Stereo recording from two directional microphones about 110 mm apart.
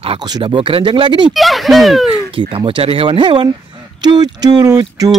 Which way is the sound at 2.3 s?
55° right (ahead or behind).